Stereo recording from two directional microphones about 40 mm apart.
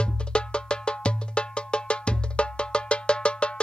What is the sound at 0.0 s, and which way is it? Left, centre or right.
Music, left.